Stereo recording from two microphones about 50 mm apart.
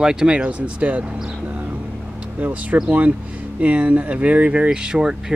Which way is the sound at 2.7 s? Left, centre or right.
Right.